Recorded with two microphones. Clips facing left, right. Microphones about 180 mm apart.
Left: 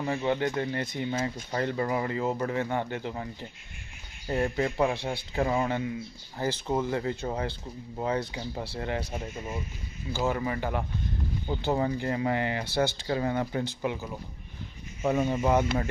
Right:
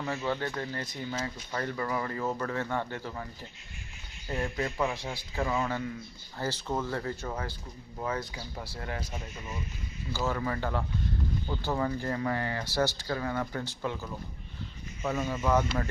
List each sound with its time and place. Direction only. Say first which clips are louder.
0.0 s speech: left 4 dB; 15° left (ahead or behind)
4.3 s speech: left 5 dB; 35° left (ahead or behind)
10.1 s speech: left 3 dB; 15° left (ahead or behind)